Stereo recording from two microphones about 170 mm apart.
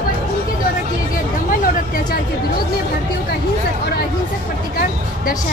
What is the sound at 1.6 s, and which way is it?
Speech, 60° left (ahead or behind).